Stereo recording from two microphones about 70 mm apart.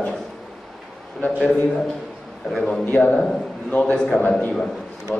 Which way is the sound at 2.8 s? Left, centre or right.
Centre.